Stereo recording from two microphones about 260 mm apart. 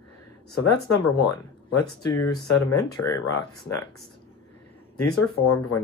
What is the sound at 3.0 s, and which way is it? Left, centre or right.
Speech, left.